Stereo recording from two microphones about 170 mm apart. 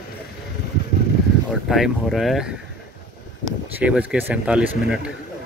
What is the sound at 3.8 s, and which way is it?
Speech, 5° right (ahead or behind).